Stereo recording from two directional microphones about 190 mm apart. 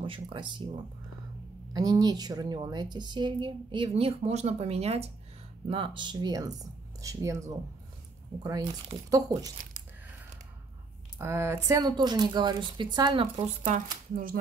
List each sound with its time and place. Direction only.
0.0 s a woman's voice: 25° right (ahead or behind)
1.7 s a woman's voice: 20° right (ahead or behind)
11.1 s a woman's voice: 15° right (ahead or behind)
13.7 s speech: 45° right (ahead or behind)